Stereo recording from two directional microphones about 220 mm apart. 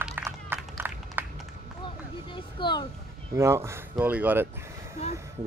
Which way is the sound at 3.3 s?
10° right (ahead or behind).